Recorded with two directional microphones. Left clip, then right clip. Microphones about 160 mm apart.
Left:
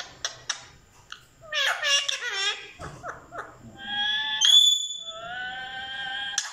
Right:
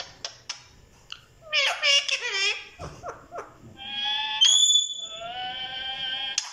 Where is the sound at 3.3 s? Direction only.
20° right (ahead or behind).